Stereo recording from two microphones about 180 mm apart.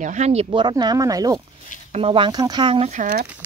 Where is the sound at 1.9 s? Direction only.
35° right (ahead or behind).